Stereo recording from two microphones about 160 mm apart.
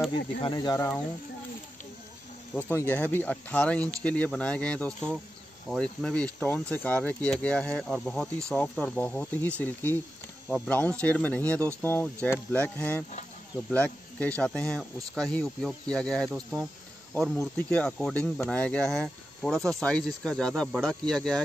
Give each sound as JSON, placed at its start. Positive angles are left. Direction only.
{"t": 0.4, "sound": "speech", "side_deg": 25}
{"t": 2.7, "sound": "speech", "side_deg": 15}